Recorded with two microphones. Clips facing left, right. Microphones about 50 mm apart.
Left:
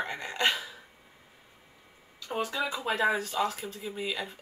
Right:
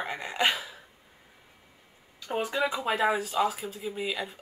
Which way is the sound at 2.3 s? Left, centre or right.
Centre.